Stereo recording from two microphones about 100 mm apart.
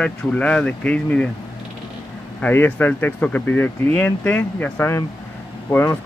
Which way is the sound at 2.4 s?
20° left (ahead or behind).